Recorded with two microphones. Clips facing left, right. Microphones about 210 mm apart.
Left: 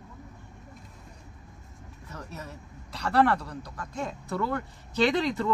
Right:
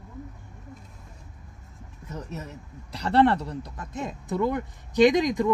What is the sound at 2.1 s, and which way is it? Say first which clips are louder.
Speech: right 5 dB; 20° right (ahead or behind).